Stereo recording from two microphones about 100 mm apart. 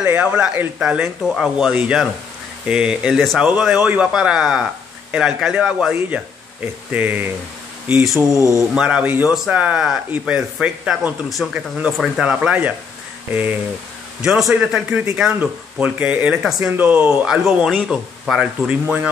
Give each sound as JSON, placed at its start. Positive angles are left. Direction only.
{"t": 0.1, "sound": "speech", "side_deg": -10}
{"t": 7.9, "sound": "speech", "side_deg": -5}
{"t": 8.2, "sound": "speech", "side_deg": -35}
{"t": 8.7, "sound": "speech", "side_deg": -10}
{"t": 14.2, "sound": "speech", "side_deg": -5}
{"t": 18.7, "sound": "speech", "side_deg": -15}